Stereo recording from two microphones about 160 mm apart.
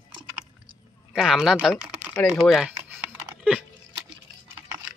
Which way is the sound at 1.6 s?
5° right (ahead or behind).